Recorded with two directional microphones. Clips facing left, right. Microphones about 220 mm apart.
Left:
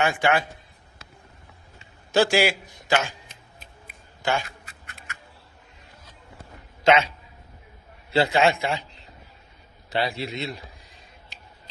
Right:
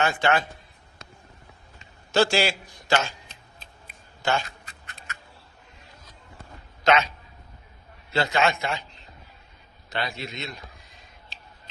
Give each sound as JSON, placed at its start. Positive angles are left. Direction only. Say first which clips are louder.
{"t": 0.0, "sound": "a man's voice", "louder": "left 1 dB", "side_deg": 15}
{"t": 2.1, "sound": "a man's voice", "louder": "left 2 dB", "side_deg": 15}
{"t": 6.8, "sound": "a man's voice", "louder": "left 2 dB", "side_deg": 30}